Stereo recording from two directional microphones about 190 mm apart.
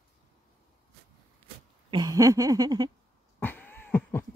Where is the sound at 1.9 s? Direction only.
20° right (ahead or behind).